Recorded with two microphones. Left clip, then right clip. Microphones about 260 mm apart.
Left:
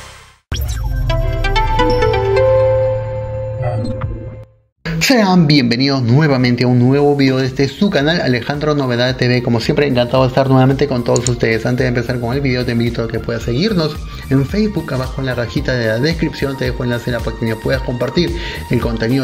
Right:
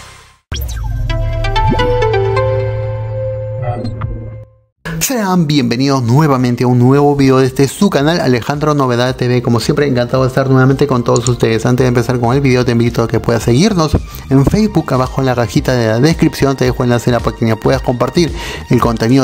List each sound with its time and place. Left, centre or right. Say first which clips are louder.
1.0 s music: left 1 dB; centre
4.8 s speech: left 3 dB; right